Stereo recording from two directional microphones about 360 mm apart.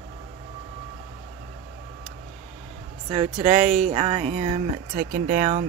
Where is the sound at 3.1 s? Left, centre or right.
Centre.